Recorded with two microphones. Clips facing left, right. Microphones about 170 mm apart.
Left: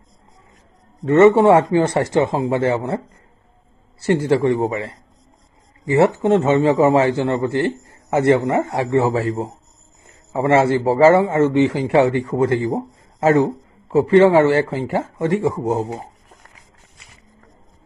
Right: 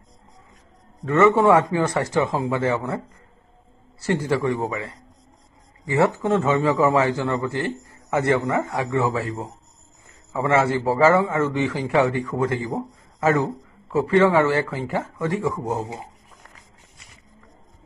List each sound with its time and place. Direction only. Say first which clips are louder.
1.0 s a man's voice: left 5 dB; 30° left (ahead or behind)
4.0 s a man's voice: left 6 dB; 30° left (ahead or behind)